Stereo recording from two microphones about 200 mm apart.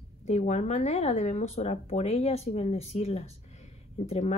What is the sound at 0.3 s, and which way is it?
A woman's voice, 35° left (ahead or behind).